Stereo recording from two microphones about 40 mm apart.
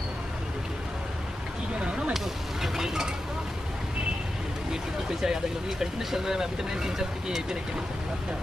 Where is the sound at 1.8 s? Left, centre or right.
Right.